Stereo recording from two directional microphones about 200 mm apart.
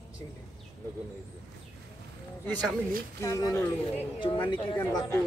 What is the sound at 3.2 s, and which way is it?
Speech, 15° left (ahead or behind).